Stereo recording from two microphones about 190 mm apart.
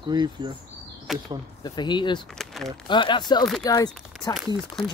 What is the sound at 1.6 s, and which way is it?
Speech, 25° left (ahead or behind).